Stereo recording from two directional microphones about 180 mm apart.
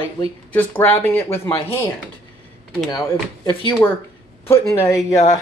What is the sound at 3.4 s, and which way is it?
Speech, 30° left (ahead or behind).